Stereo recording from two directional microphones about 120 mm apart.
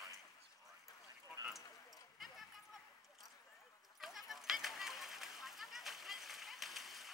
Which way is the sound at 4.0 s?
Centre (ahead or behind).